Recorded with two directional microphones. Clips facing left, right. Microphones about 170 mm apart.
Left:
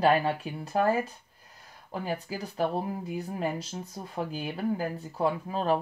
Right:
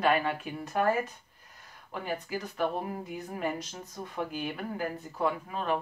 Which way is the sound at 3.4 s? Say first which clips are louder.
Right 2 dB; 30° left (ahead or behind).